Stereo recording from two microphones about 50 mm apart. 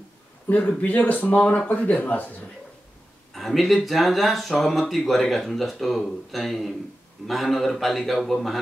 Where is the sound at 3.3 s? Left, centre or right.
Centre.